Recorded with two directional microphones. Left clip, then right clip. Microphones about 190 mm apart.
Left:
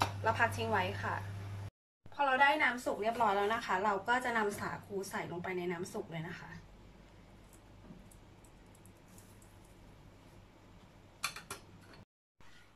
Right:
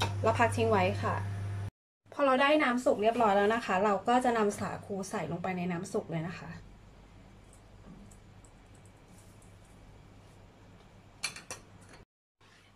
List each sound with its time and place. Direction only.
0.2 s a woman's voice: 20° right (ahead or behind)
2.1 s a woman's voice: 25° right (ahead or behind)